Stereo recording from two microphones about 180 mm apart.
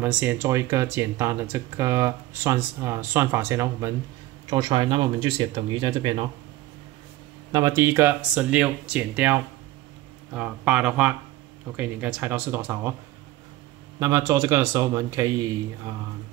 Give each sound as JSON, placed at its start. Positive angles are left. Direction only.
{"t": 0.0, "sound": "speech", "side_deg": -10}
{"t": 4.5, "sound": "speech", "side_deg": -25}
{"t": 7.5, "sound": "speech", "side_deg": -15}
{"t": 13.9, "sound": "speech", "side_deg": -20}